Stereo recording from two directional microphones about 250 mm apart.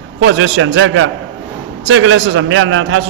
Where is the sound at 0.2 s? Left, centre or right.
Right.